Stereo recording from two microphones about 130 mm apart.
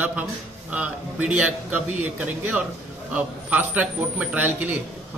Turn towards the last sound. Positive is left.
turn(degrees=-15)  # may be behind; listen again after turning